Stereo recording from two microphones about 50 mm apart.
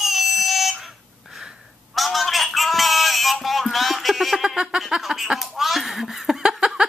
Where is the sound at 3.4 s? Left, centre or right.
Centre.